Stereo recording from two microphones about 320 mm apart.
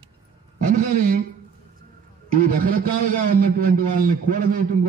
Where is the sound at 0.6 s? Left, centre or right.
Right.